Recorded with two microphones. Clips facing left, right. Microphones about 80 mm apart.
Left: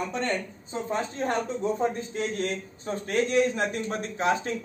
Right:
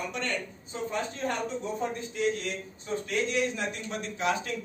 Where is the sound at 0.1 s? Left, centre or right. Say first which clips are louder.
Left 4 dB; left.